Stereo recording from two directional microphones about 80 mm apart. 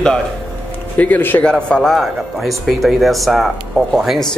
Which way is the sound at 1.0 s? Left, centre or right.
Left.